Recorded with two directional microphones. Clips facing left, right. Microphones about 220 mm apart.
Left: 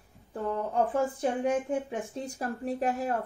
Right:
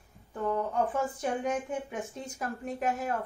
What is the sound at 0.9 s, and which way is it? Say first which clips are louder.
Speech: left 3 dB; 30° left (ahead or behind).